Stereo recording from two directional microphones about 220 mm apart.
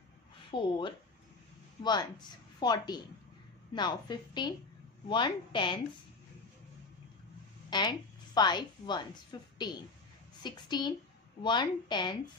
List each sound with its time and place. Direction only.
0.5 s a woman's voice: 20° left (ahead or behind)
7.7 s a woman's voice: 20° left (ahead or behind)